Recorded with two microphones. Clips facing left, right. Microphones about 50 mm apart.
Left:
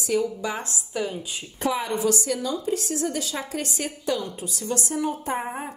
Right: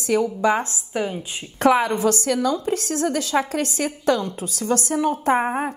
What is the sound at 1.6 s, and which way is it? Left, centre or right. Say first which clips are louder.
A woman's voice: right 7 dB; right.